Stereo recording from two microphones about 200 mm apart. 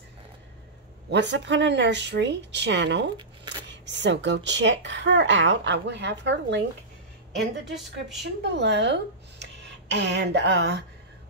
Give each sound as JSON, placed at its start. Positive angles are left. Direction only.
{"t": 1.1, "sound": "speech", "side_deg": -65}
{"t": 8.2, "sound": "speech", "side_deg": -60}